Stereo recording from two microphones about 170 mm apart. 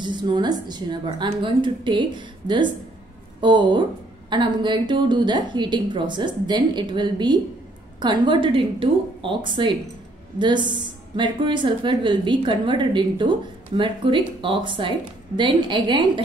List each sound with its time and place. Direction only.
0.0 s a woman's voice: 25° right (ahead or behind)